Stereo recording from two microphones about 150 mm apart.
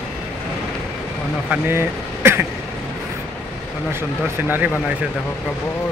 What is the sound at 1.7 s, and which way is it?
Speech, 15° right (ahead or behind).